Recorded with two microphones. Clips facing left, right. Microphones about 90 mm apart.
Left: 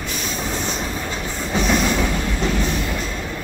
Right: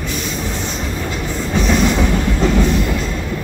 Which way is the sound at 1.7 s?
5° right (ahead or behind).